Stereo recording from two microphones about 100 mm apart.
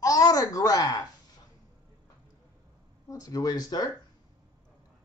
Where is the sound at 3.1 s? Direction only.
40° left (ahead or behind).